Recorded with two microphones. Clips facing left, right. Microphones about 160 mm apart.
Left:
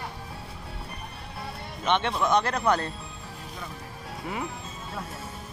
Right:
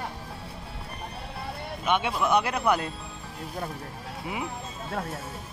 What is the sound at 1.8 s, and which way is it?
Speech, 5° right (ahead or behind).